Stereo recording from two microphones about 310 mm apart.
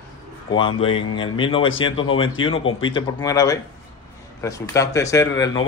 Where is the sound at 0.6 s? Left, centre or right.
Centre.